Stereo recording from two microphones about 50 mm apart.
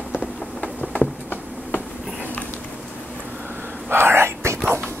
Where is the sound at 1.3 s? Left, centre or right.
Left.